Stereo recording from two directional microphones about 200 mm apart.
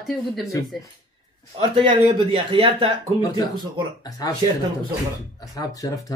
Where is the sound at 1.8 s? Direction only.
25° right (ahead or behind).